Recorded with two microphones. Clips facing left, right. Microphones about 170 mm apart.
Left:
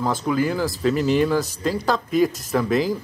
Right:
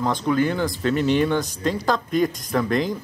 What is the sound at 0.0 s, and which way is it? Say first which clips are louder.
A woman's voice: right 1 dB; 5° left (ahead or behind).